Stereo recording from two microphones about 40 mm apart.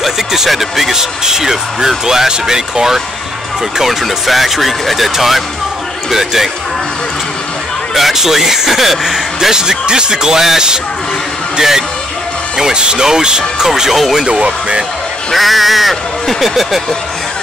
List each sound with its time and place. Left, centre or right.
0.0 s speech: centre
7.9 s speech: centre
12.5 s speech: centre
14.2 s speech: right
15.3 s speech: centre